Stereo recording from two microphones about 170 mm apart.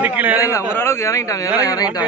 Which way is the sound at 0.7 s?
15° left (ahead or behind).